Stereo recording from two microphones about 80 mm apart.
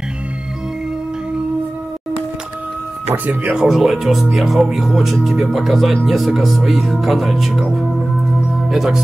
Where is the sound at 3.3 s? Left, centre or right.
Centre.